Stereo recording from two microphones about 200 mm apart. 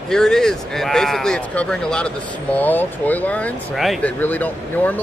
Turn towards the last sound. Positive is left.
turn(degrees=10)  # may be behind; listen again after turning